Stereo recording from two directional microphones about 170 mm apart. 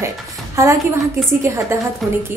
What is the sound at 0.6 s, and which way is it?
Speech, 15° right (ahead or behind).